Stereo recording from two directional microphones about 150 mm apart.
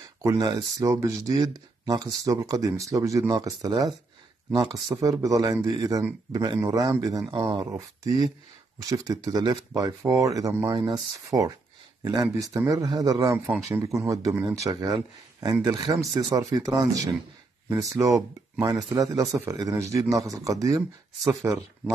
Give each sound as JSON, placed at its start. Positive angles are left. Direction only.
{"t": 0.2, "sound": "speech", "side_deg": -25}
{"t": 5.0, "sound": "speech", "side_deg": -20}
{"t": 10.7, "sound": "speech", "side_deg": -30}